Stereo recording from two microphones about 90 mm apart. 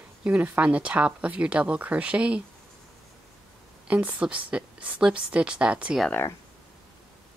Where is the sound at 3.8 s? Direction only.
15° right (ahead or behind).